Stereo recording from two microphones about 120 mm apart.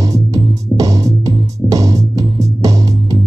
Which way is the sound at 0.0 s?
30° right (ahead or behind).